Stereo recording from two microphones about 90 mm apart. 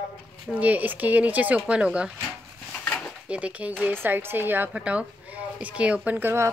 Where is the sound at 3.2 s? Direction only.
15° right (ahead or behind).